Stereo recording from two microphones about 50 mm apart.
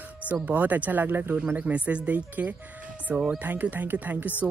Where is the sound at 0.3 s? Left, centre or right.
Right.